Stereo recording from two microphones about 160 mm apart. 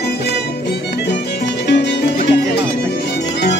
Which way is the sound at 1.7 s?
90° left.